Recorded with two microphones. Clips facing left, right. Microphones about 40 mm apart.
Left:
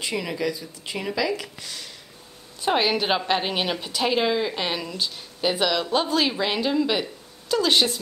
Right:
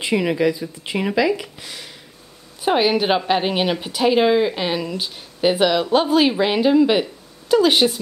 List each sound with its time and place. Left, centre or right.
0.0 s speech: right